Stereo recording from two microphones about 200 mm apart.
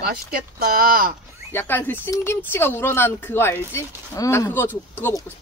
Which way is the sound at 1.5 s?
10° left (ahead or behind).